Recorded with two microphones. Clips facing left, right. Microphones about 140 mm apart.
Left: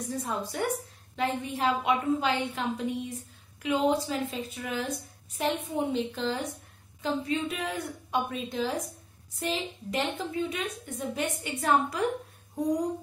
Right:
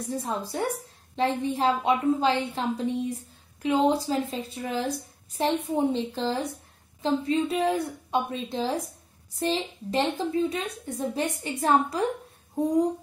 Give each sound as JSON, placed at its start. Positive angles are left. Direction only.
{"t": 0.1, "sound": "a woman's voice", "side_deg": -30}